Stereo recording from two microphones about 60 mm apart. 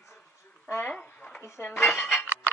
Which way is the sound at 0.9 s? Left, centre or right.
Left.